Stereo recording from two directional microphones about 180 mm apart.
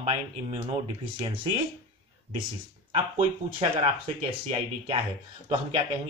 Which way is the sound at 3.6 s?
35° right (ahead or behind).